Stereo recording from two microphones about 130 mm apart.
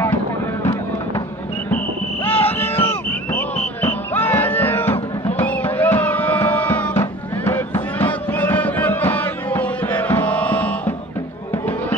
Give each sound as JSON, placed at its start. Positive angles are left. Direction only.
{"t": 2.2, "sound": "music", "side_deg": 15}